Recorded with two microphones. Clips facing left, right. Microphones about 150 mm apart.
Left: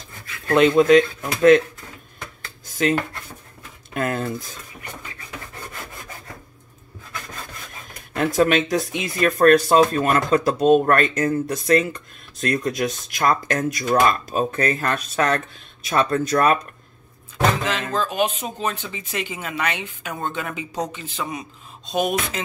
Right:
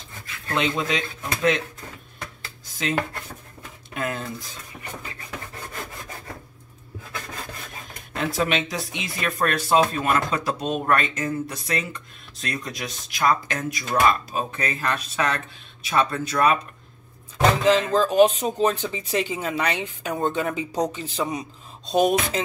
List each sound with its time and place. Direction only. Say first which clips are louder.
0.6 s speech: left 12 dB; 50° left (ahead or behind)
4.0 s speech: left 5 dB; 50° left (ahead or behind)
8.2 s speech: left 6 dB; 50° left (ahead or behind)
17.6 s speech: right 6 dB; 35° right (ahead or behind)